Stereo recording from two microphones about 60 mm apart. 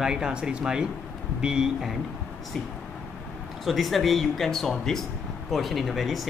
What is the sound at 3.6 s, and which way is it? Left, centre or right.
Speech, centre.